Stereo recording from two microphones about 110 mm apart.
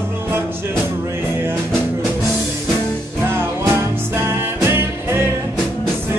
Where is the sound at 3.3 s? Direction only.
20° right (ahead or behind).